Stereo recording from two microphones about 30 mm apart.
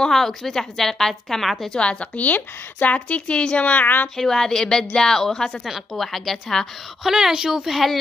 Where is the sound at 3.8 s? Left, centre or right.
Left.